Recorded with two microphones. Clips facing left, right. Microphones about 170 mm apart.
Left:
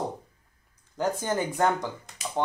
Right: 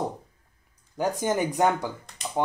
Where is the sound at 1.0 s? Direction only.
15° right (ahead or behind).